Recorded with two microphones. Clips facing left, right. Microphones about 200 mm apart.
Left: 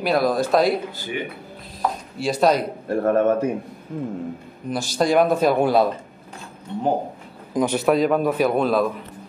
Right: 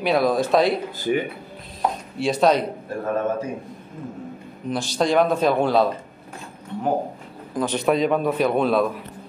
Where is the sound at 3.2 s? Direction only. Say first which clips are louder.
Left 6 dB; 65° left (ahead or behind).